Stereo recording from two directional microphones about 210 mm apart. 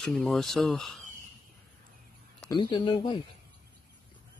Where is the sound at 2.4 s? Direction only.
20° left (ahead or behind).